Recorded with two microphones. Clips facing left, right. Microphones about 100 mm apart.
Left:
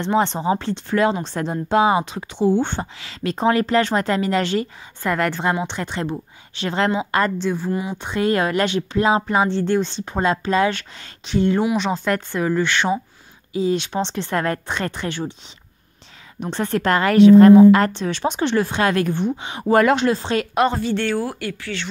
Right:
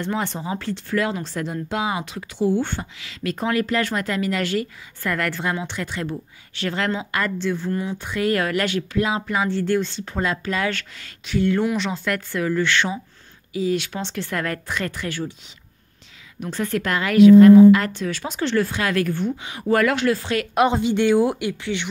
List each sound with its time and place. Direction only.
0.0 s a woman's voice: 25° left (ahead or behind)
7.3 s a woman's voice: 15° left (ahead or behind)
8.0 s speech: 25° left (ahead or behind)
16.3 s a woman's voice: 30° left (ahead or behind)
17.9 s speech: 25° left (ahead or behind)
20.6 s a woman's voice: 15° right (ahead or behind)